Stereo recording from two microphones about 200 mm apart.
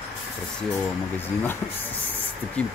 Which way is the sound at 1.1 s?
10° left (ahead or behind).